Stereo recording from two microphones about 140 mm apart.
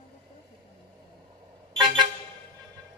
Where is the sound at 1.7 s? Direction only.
30° right (ahead or behind).